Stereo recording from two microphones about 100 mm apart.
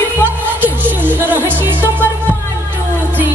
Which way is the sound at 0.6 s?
20° right (ahead or behind).